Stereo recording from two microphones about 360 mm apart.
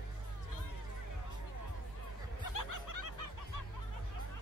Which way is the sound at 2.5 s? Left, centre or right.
Left.